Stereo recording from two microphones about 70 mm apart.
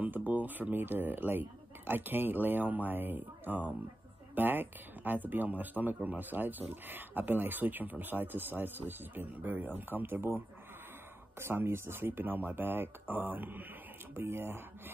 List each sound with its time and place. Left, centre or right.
0.0 s speech: right